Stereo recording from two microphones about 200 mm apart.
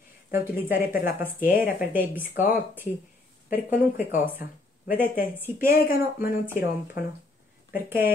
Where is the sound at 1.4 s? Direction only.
10° right (ahead or behind).